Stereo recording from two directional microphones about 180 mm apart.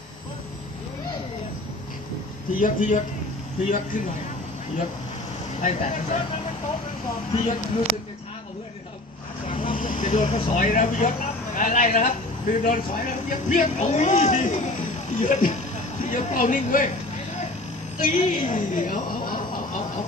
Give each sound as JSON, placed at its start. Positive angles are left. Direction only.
{"t": 2.5, "sound": "a man's voice", "side_deg": 45}
{"t": 5.6, "sound": "a man's voice", "side_deg": 40}
{"t": 9.6, "sound": "vehicle", "side_deg": 50}
{"t": 10.2, "sound": "speech", "side_deg": 30}
{"t": 10.5, "sound": "a man's voice", "side_deg": 45}
{"t": 18.0, "sound": "speech", "side_deg": 45}